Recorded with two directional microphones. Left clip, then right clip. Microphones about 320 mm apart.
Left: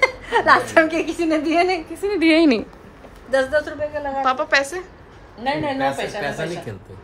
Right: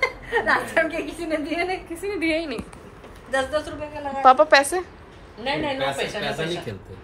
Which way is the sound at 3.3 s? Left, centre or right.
Left.